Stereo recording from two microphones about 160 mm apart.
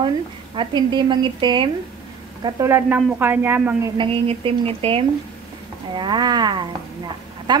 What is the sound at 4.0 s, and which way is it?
A woman's voice, 35° right (ahead or behind).